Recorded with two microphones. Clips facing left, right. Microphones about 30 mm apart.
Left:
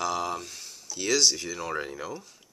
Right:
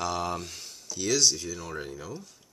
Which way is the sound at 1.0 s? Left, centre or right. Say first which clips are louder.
Left 1 dB; centre.